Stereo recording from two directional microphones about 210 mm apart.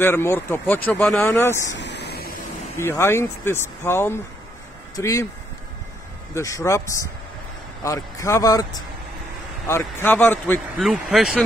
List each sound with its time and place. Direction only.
0.0 s speech: 10° left (ahead or behind)
1.8 s a sound: 55° left (ahead or behind)
2.8 s speech: 10° left (ahead or behind)
6.3 s speech: 15° left (ahead or behind)
10.8 s speech: centre (ahead or behind)